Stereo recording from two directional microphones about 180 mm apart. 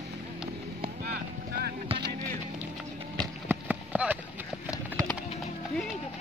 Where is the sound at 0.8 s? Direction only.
55° right (ahead or behind).